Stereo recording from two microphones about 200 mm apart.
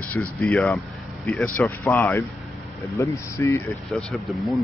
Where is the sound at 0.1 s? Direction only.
5° left (ahead or behind).